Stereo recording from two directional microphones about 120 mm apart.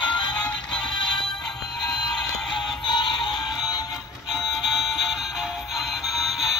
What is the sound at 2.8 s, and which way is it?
Music, 40° left (ahead or behind).